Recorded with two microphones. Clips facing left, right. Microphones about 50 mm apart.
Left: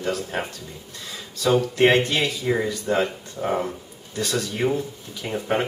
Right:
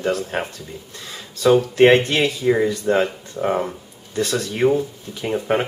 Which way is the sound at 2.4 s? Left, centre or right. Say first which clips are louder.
Right 5 dB; centre.